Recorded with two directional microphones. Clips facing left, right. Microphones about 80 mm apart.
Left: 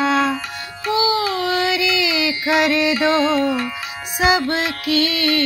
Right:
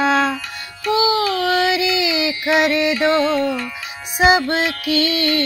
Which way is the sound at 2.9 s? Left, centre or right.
Centre.